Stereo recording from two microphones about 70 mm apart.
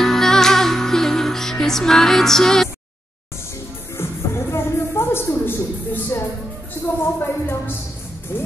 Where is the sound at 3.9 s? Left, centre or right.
Left.